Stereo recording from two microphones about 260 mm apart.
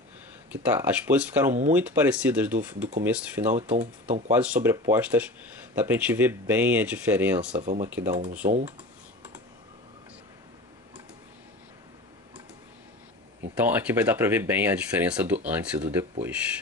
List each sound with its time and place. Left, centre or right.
0.7 s speech: centre
3.7 s speech: right
4.3 s speech: centre
7.6 s speech: right
7.9 s speech: centre
13.6 s speech: centre